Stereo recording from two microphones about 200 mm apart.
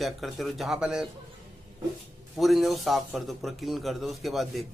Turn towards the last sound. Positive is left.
turn(degrees=0)  # may be behind; listen again after turning